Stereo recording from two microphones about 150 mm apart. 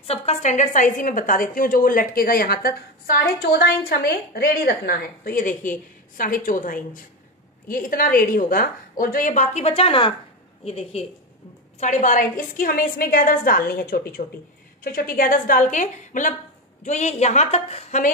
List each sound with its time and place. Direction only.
0.0 s a woman's voice: 45° left (ahead or behind)
11.8 s a woman's voice: 55° left (ahead or behind); by 14.2 s 80° left
14.8 s a woman's voice: 70° left (ahead or behind); by 18.1 s 50° left (ahead or behind)